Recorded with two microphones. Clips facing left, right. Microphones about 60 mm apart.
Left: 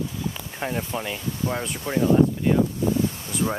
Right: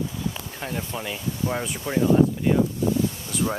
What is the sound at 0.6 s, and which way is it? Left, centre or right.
Speech, left.